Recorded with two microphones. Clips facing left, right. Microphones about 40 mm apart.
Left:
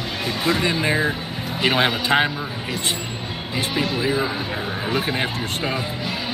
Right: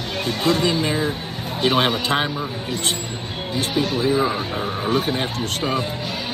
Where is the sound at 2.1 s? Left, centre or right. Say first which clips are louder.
Left 5 dB; centre.